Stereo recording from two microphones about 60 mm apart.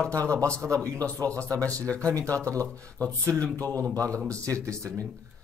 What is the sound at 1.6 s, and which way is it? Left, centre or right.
Speech, left.